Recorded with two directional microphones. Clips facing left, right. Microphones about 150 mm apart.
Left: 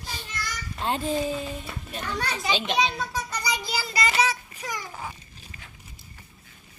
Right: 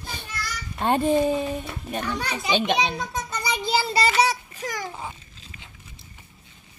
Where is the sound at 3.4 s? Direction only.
25° right (ahead or behind).